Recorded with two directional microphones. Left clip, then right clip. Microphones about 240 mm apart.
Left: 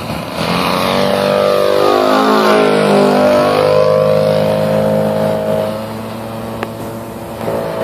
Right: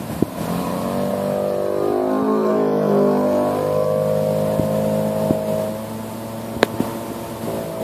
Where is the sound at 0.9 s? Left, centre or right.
Centre.